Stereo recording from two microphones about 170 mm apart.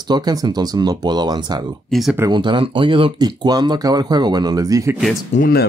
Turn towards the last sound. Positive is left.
turn(degrees=60)  # may be behind; listen again after turning